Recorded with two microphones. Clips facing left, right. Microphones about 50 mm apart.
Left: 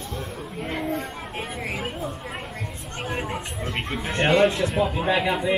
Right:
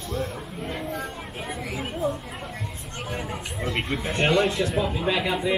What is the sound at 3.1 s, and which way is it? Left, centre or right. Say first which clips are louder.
Speech: left 3 dB; left.